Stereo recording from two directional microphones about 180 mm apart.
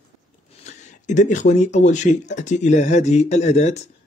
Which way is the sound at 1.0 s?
45° left (ahead or behind).